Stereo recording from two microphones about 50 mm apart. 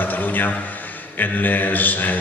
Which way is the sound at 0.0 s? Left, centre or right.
Left.